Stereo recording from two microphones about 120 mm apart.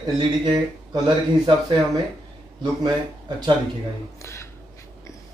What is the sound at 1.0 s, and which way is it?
Speech, 35° right (ahead or behind).